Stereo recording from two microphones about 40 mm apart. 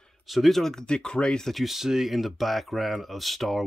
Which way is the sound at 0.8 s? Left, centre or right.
Left.